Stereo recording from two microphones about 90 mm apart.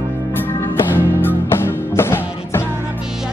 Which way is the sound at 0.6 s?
25° left (ahead or behind).